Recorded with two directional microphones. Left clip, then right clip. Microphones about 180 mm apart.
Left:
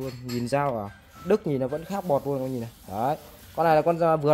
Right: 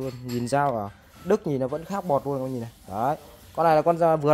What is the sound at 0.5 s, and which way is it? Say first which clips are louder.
Speech: right 2 dB; 25° right (ahead or behind).